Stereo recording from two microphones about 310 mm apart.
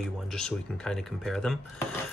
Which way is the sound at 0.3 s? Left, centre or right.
Centre.